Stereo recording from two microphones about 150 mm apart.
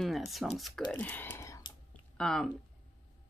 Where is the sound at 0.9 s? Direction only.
10° left (ahead or behind).